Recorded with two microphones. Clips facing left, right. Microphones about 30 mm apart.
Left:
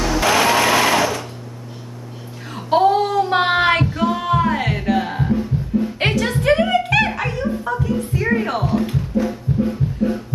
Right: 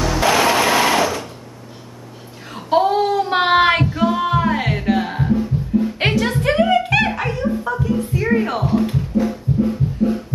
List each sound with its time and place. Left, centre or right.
0.2 s sewing machine: centre
2.4 s a sound: centre
3.8 s music: centre